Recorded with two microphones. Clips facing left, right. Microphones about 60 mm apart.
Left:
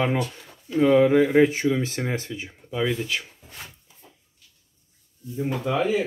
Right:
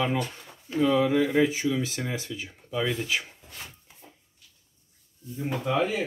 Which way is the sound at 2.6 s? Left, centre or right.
Centre.